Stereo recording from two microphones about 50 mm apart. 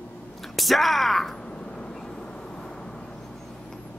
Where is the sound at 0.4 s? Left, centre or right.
Centre.